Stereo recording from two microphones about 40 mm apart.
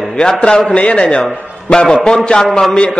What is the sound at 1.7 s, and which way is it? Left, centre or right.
Music, centre.